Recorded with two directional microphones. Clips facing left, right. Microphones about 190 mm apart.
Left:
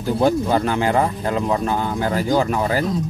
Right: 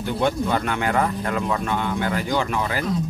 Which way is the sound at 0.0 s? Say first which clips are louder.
Left 4 dB; 35° left (ahead or behind).